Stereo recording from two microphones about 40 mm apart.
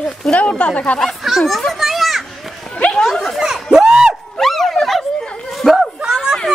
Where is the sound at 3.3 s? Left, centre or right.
Centre.